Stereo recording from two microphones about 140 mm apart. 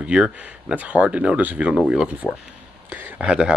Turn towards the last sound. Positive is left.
turn(degrees=-5)  # may be behind; listen again after turning